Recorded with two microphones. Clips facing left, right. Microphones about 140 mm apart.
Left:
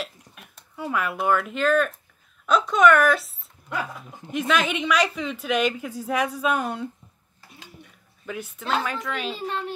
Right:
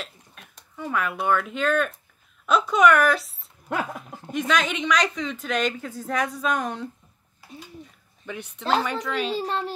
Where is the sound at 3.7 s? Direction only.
50° right (ahead or behind).